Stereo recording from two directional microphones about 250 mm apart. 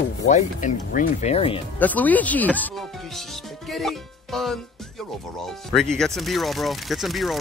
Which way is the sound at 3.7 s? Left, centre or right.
Centre.